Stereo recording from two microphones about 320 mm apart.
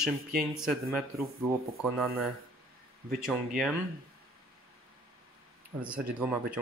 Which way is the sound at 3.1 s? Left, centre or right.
Centre.